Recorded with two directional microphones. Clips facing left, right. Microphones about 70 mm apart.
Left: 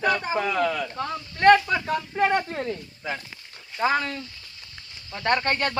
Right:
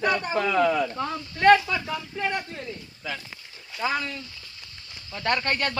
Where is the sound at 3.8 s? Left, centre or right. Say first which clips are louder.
Left 4 dB; left.